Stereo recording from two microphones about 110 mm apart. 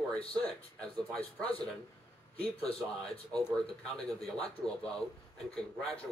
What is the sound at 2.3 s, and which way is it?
Speech, 60° left (ahead or behind).